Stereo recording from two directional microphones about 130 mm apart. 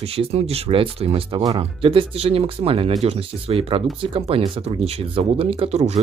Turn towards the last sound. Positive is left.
turn(degrees=-45)  # may be behind; listen again after turning